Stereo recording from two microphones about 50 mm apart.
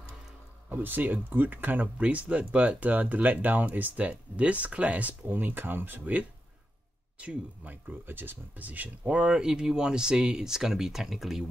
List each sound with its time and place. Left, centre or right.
0.7 s speech: right
2.0 s speech: right
7.2 s speech: right; by 11.4 s centre